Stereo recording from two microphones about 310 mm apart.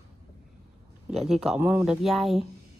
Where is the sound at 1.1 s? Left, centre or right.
Centre.